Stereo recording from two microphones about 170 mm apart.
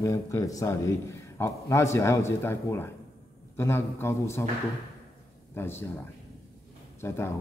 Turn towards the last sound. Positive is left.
turn(degrees=15)  # may be behind; listen again after turning